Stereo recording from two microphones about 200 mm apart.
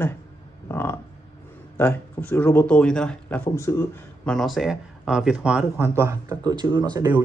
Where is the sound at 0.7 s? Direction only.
10° left (ahead or behind).